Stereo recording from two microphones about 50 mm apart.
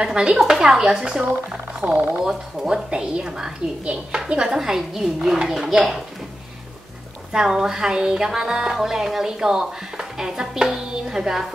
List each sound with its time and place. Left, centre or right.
0.0 s speech: centre
1.8 s speech: right
2.2 s speech: centre
3.8 s speech: right
4.5 s speech: centre
7.3 s speech: centre